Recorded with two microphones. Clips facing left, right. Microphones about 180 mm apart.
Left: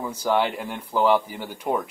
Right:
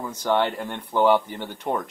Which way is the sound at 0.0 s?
10° left (ahead or behind).